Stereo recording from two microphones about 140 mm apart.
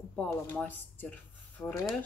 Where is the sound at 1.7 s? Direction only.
25° left (ahead or behind).